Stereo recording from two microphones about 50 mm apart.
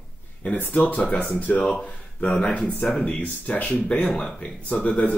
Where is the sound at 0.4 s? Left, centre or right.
Left.